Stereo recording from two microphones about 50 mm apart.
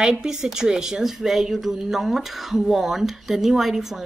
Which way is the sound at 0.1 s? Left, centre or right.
Centre.